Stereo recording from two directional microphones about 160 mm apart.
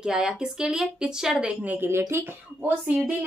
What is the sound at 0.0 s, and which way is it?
Speech, 5° right (ahead or behind).